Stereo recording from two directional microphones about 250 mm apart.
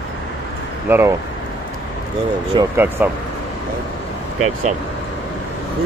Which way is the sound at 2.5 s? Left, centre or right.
Centre.